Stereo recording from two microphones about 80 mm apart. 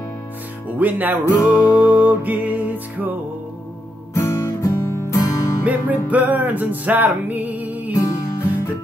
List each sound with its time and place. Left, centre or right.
0.7 s music: right
1.2 s music: left
1.8 s music: right
4.1 s music: left
5.3 s music: left
5.7 s music: centre